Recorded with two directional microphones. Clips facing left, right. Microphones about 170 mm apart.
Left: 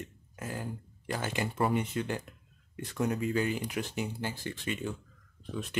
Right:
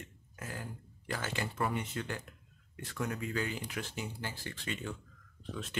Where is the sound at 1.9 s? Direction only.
20° left (ahead or behind).